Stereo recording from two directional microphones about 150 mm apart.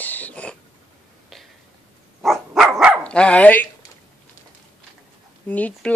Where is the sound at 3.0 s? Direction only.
5° left (ahead or behind).